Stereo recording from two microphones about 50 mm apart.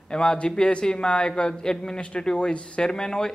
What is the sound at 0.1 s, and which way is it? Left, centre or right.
A man's voice, centre.